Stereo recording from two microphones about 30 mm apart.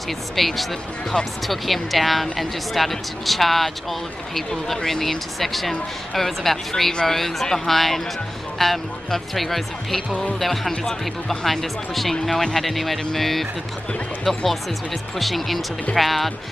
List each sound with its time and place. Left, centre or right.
0.4 s speech: centre
1.1 s speech: left
1.5 s speech: centre